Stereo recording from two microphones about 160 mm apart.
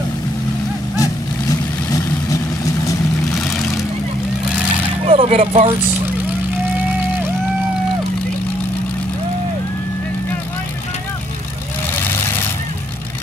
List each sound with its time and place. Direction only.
3.3 s vehicle: centre (ahead or behind)
5.0 s speech: 40° right (ahead or behind)